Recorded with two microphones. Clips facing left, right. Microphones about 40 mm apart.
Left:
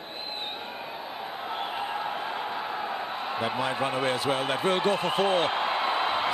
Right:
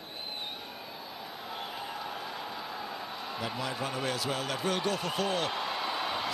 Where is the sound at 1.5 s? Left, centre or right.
Left.